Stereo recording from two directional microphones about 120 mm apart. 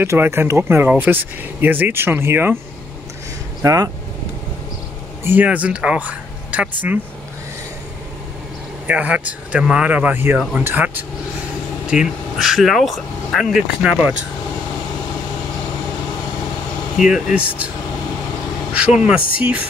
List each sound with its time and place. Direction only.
0.0 s speech: 20° right (ahead or behind)
3.6 s speech: 30° right (ahead or behind)
5.2 s speech: 15° right (ahead or behind)
8.8 s speech: 10° right (ahead or behind)
11.9 s speech: 5° right (ahead or behind)
17.0 s speech: 5° right (ahead or behind)
18.8 s speech: 5° right (ahead or behind)